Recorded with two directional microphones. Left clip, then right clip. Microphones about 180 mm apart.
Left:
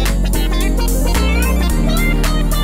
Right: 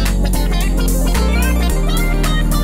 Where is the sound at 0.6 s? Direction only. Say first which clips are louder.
Left 1 dB; centre (ahead or behind).